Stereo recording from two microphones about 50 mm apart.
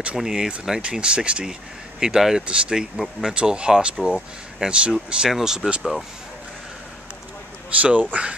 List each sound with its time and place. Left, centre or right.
0.2 s speech: centre
7.8 s speech: right